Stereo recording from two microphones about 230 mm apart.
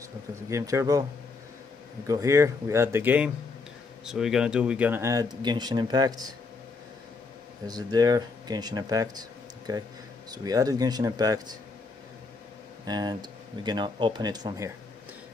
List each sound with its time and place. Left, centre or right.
0.5 s speech: centre
2.0 s speech: centre
7.6 s speech: centre
12.8 s speech: centre